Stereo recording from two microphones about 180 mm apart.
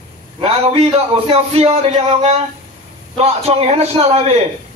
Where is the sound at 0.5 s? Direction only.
35° right (ahead or behind).